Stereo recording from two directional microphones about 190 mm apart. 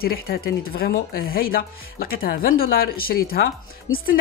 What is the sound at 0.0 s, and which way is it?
Speech, 50° left (ahead or behind).